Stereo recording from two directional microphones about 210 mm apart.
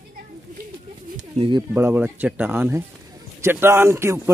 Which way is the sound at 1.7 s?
10° right (ahead or behind).